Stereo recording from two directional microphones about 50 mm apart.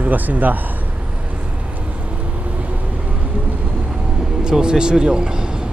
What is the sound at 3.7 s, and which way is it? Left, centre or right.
Vehicle, centre.